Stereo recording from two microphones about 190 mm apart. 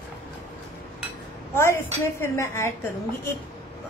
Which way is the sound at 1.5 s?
15° left (ahead or behind).